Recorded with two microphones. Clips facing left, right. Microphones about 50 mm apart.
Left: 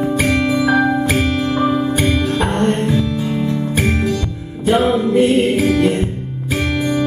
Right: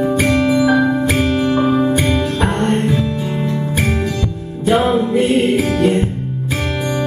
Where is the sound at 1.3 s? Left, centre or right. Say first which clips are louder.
Right 2 dB; centre.